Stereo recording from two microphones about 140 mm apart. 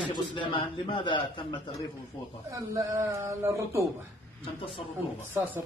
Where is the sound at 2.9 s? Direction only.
20° right (ahead or behind).